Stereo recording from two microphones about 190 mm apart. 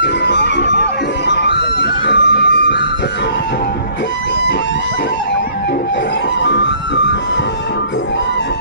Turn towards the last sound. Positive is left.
turn(degrees=70)  # may be behind; listen again after turning